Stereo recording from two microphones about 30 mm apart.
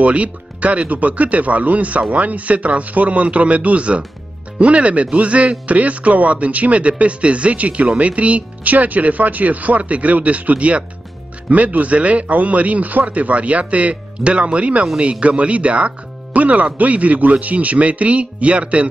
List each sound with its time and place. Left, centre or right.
0.0 s speech: right